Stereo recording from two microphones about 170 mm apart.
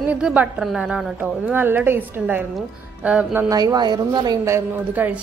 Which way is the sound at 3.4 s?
25° right (ahead or behind).